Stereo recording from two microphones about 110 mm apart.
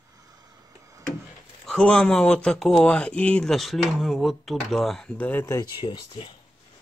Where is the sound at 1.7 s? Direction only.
10° left (ahead or behind).